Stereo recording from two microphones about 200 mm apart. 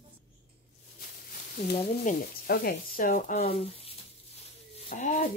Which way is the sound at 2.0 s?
45° left (ahead or behind).